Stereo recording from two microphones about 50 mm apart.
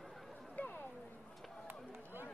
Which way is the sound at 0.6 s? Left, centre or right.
Left.